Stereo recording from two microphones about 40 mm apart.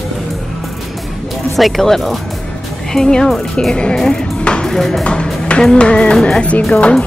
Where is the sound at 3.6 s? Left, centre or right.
Left.